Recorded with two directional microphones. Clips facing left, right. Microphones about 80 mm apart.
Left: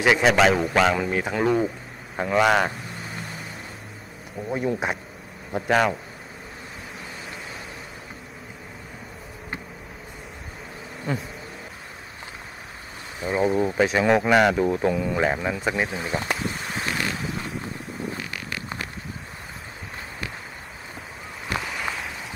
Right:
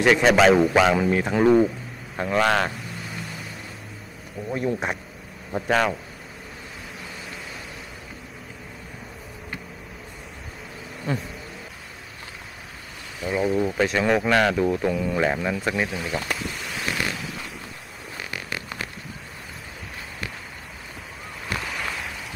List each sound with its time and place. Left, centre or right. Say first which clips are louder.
0.0 s speech: right 2 dB; centre
2.1 s a sound: left 1 dB; centre
4.6 s speech: even; centre
11.1 s speech: right 1 dB; centre
13.2 s speech: left 1 dB; left
16.6 s wind: right 2 dB; left
21.5 s a sound: left 2 dB; centre